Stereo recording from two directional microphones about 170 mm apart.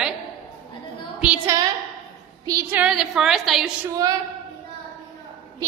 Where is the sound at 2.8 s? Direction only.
5° right (ahead or behind).